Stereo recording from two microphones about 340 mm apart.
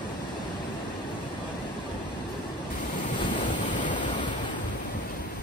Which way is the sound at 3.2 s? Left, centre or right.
Left.